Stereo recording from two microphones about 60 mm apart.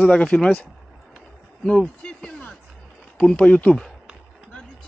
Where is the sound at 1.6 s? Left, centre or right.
Centre.